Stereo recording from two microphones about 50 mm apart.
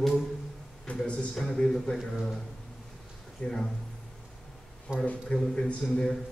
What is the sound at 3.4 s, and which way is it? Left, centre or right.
Speech, centre.